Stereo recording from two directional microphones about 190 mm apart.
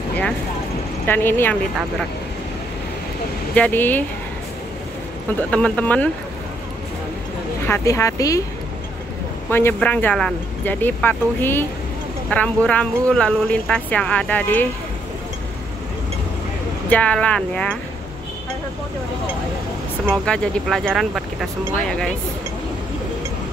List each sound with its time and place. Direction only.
1.0 s speech: 10° left (ahead or behind)
3.5 s speech: 10° left (ahead or behind)
5.5 s speech: 5° left (ahead or behind)
7.6 s speech: 15° left (ahead or behind)
9.5 s speech: 10° left (ahead or behind)
16.9 s speech: 5° left (ahead or behind)
20.2 s speech: 5° left (ahead or behind)